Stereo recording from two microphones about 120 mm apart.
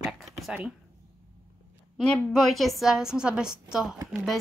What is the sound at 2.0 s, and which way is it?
A woman's voice, 5° left (ahead or behind).